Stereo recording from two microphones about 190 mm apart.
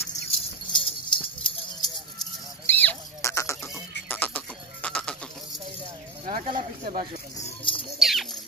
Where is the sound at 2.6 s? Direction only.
10° left (ahead or behind).